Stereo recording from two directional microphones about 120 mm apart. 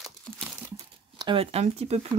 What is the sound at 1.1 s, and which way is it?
Speech, 45° right (ahead or behind).